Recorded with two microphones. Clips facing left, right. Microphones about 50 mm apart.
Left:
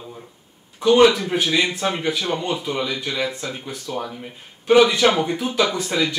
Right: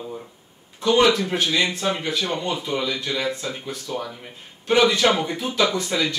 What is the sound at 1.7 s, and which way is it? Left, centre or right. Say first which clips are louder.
Speech: left 2 dB; left.